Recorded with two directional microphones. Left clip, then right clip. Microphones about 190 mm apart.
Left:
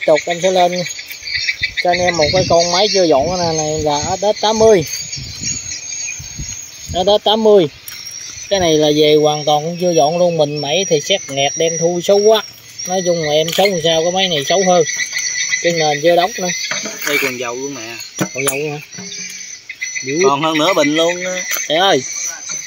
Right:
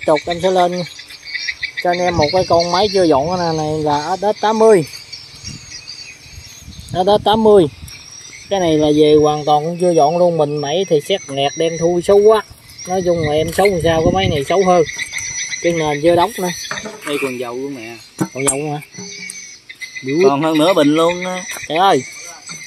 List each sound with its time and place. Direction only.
0.0 s speech: 10° right (ahead or behind)
6.9 s speech: 10° right (ahead or behind)
8.5 s speech: centre (ahead or behind)
15.8 s speech: 5° right (ahead or behind)
17.0 s speech: centre (ahead or behind)
18.3 s speech: 15° right (ahead or behind)
20.2 s speech: 35° right (ahead or behind)
21.6 s speech: centre (ahead or behind)